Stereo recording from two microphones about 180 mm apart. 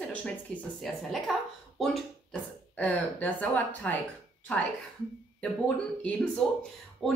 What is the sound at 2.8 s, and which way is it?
A woman's voice, 10° left (ahead or behind).